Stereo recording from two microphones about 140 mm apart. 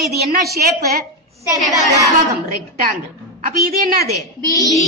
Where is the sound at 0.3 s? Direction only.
90° right.